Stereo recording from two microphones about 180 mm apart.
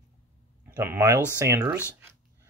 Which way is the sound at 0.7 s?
10° right (ahead or behind).